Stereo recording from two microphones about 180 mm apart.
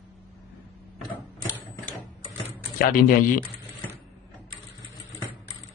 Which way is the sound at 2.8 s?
50° left (ahead or behind).